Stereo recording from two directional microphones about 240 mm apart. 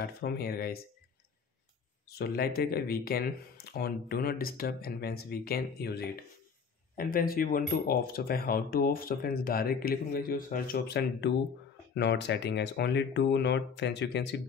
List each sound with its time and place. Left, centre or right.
0.0 s speech: left
2.0 s speech: left